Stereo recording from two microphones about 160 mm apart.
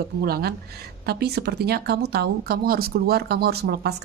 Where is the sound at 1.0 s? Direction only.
90° right.